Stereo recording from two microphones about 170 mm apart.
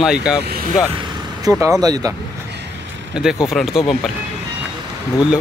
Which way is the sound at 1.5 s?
20° right (ahead or behind).